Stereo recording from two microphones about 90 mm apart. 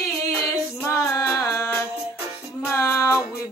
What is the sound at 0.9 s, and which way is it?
Music, 30° left (ahead or behind).